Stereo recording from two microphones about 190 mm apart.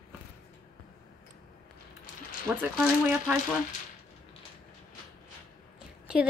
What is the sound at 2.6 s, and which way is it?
Speech, 5° right (ahead or behind).